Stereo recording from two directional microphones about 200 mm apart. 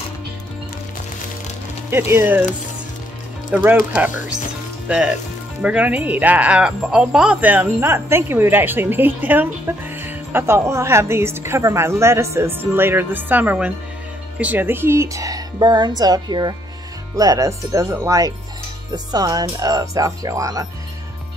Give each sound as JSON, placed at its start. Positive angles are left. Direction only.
{"t": 1.9, "sound": "speech", "side_deg": -10}
{"t": 3.5, "sound": "speech", "side_deg": -5}